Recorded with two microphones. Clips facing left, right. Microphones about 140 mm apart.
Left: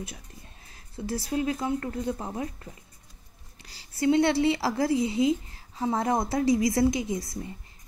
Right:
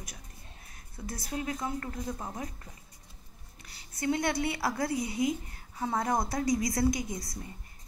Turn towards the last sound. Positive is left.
turn(degrees=25)  # may be behind; listen again after turning